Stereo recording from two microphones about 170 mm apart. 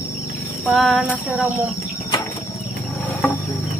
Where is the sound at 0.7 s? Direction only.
Centre (ahead or behind).